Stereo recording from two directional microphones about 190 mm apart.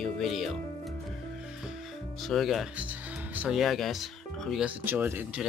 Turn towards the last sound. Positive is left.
turn(degrees=-10)  # may be behind; listen again after turning